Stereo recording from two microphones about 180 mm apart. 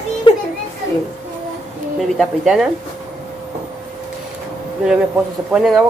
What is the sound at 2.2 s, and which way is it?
Speech, 5° right (ahead or behind).